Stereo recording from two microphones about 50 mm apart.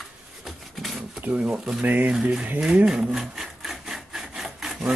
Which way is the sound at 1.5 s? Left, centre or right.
Centre.